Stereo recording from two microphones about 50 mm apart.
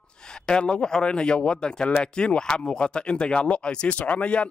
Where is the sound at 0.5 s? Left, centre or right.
Centre.